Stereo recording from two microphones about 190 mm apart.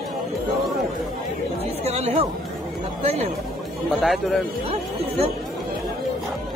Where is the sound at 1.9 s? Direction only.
35° right (ahead or behind).